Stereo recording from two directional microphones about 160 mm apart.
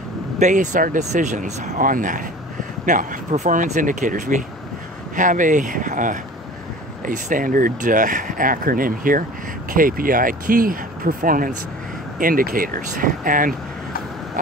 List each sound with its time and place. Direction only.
0.4 s speech: 50° right (ahead or behind)